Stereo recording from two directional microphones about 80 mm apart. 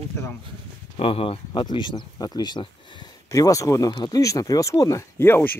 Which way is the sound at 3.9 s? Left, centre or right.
Left.